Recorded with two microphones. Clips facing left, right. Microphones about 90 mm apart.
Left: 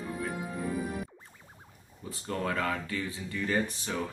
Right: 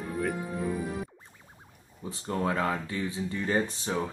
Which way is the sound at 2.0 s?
25° right (ahead or behind).